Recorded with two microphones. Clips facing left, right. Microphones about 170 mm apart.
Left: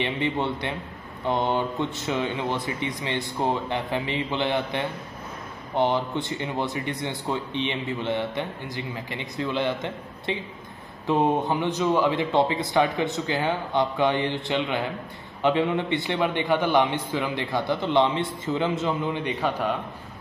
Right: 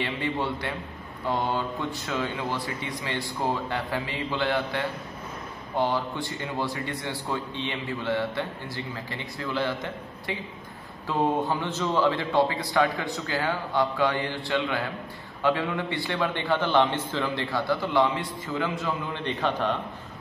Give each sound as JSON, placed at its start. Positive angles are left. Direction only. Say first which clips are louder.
{"t": 0.0, "sound": "a man's voice", "louder": "left 3 dB", "side_deg": 20}
{"t": 19.2, "sound": "a man's voice", "louder": "left 1 dB", "side_deg": 10}